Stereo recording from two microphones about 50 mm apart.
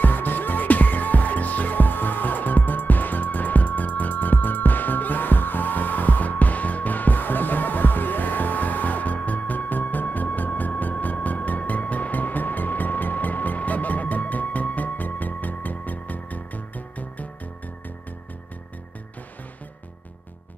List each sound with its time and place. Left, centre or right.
0.0 s music: left